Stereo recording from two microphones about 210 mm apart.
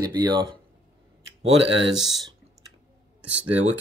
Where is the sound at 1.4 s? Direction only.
30° right (ahead or behind).